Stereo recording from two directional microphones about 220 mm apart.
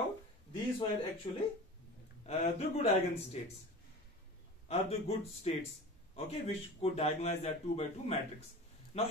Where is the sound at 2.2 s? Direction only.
30° left (ahead or behind).